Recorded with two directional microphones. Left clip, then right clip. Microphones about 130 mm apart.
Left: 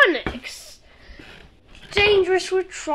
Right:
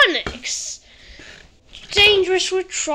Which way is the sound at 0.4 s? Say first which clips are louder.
Right 9 dB; 5° right (ahead or behind).